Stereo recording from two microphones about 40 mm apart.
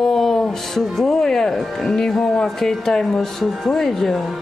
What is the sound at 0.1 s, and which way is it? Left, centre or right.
Music, centre.